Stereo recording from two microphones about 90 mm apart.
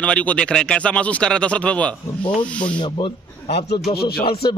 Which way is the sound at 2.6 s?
65° left (ahead or behind).